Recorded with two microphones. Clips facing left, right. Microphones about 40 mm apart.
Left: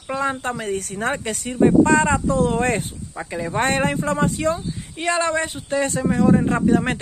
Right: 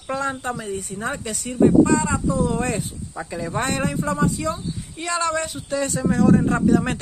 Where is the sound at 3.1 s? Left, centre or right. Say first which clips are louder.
Left 2 dB; left.